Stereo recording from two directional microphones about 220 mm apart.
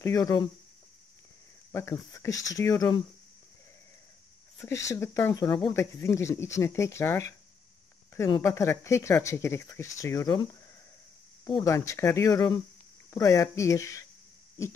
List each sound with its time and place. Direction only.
0.0 s speech: 15° left (ahead or behind)
1.7 s speech: 10° left (ahead or behind)
4.6 s speech: 15° left (ahead or behind)